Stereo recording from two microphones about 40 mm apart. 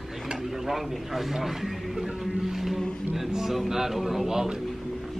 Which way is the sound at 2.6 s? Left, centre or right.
Centre.